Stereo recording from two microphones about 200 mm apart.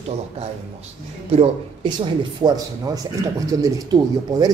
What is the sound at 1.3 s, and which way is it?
Speech, 25° right (ahead or behind).